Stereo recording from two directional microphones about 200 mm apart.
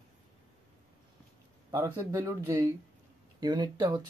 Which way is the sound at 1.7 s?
10° right (ahead or behind).